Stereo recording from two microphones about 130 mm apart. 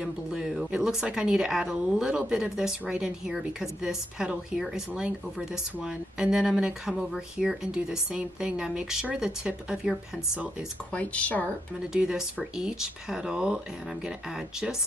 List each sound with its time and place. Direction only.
0.0 s a woman's voice: 5° right (ahead or behind)
10.9 s speech: 10° left (ahead or behind)
11.9 s a woman's voice: 5° right (ahead or behind)